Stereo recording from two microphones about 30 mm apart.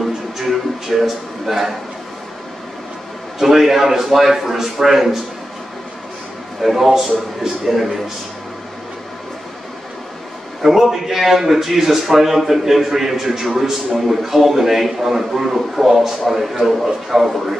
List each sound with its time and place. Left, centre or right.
0.0 s a man's voice: centre
3.3 s a man's voice: centre
6.6 s a man's voice: centre
10.6 s a man's voice: centre